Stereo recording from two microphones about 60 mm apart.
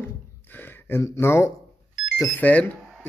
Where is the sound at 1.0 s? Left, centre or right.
Left.